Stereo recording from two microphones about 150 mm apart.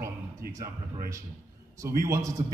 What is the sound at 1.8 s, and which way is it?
Speech, 20° right (ahead or behind).